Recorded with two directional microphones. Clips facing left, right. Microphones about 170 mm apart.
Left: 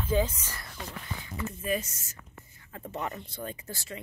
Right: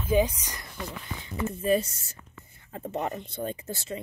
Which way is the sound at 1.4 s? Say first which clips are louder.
Right 7 dB; 30° right (ahead or behind).